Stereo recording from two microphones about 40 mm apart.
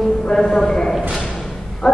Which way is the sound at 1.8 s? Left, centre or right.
Centre.